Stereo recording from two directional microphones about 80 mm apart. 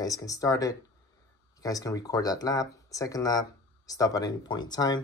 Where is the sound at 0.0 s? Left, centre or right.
Left.